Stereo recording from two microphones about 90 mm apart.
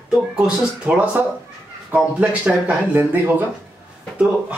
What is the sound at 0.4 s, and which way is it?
Speech, 15° right (ahead or behind).